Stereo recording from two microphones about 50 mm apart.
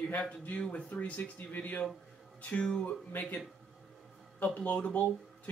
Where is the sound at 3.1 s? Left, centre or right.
Left.